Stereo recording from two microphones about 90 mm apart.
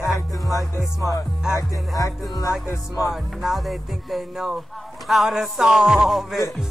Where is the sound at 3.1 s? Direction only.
5° right (ahead or behind).